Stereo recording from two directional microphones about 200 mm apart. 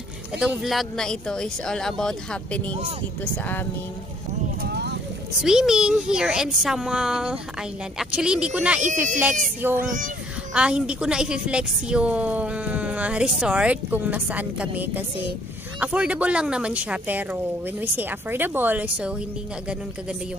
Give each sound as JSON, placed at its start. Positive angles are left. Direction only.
{"t": 0.4, "sound": "a woman's voice", "side_deg": 0}
{"t": 4.6, "sound": "a sound", "side_deg": -55}
{"t": 5.4, "sound": "a woman's voice", "side_deg": -5}